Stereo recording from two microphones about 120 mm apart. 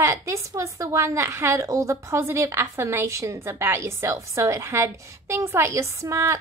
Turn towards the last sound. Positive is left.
turn(degrees=-25)  # may be behind; listen again after turning